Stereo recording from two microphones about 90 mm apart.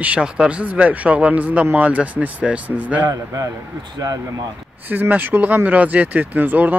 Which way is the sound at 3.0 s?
45° right (ahead or behind).